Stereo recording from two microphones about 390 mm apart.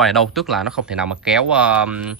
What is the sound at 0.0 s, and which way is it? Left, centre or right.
Speech, centre.